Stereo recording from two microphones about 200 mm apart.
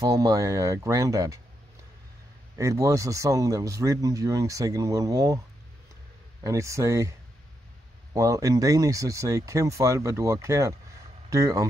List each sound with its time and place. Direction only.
0.0 s speech: 15° right (ahead or behind)
2.5 s speech: 15° right (ahead or behind)
6.4 s speech: 15° right (ahead or behind)